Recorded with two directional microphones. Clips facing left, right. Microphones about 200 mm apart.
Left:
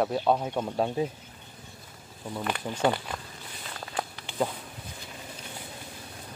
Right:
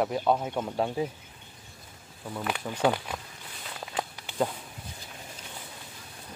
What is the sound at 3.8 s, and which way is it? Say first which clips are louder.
Walk: even; 5° right (ahead or behind).